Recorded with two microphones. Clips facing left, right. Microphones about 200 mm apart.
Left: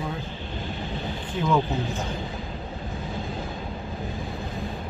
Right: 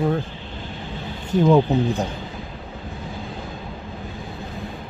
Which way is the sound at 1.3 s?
40° right (ahead or behind).